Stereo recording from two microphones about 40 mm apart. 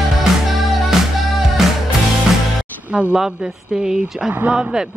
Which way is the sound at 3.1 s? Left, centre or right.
Centre.